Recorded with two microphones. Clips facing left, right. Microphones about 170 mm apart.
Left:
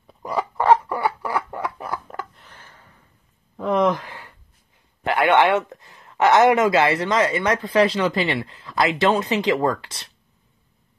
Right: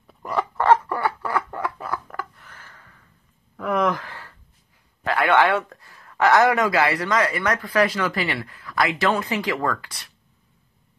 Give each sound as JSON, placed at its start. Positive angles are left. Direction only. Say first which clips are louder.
{"t": 0.0, "sound": "fowl", "louder": "even", "side_deg": 10}
{"t": 3.5, "sound": "a sound", "louder": "left 3 dB", "side_deg": 25}
{"t": 5.0, "sound": "speech", "louder": "left 2 dB", "side_deg": 25}